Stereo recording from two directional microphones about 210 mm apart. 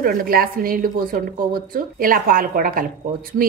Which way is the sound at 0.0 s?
45° right (ahead or behind).